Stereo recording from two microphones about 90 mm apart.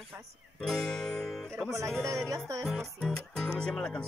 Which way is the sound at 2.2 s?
35° right (ahead or behind).